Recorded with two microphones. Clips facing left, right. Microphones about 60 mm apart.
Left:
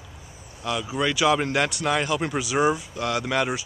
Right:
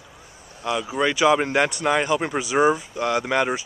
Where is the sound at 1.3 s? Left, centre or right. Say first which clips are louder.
Right 3 dB; centre.